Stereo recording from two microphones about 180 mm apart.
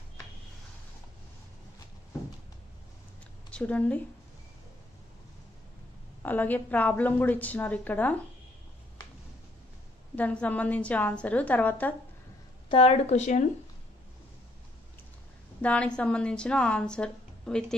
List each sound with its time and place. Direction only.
3.4 s a woman's voice: 5° left (ahead or behind)
6.2 s a woman's voice: 10° left (ahead or behind)
10.1 s a woman's voice: 10° left (ahead or behind)
12.6 s a woman's voice: 30° left (ahead or behind)
15.6 s a woman's voice: 5° left (ahead or behind)